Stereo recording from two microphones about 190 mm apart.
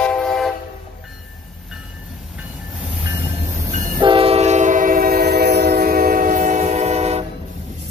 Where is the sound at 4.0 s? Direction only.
30° right (ahead or behind).